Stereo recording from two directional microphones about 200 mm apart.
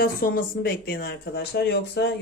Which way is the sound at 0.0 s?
45° left (ahead or behind).